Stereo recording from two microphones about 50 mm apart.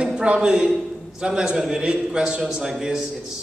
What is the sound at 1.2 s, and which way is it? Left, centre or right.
A man's voice, centre.